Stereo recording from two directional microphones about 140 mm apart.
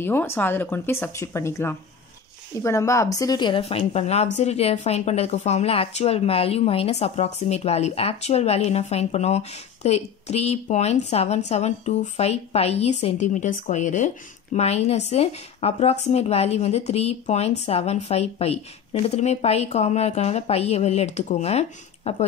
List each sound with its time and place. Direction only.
0.0 s a woman's voice: 15° left (ahead or behind); by 22.1 s 50° left (ahead or behind)